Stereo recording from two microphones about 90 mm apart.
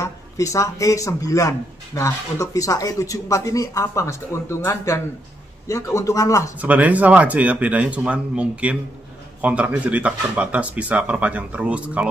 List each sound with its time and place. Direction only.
0.0 s speech: 35° left (ahead or behind)
6.6 s speech: 15° right (ahead or behind)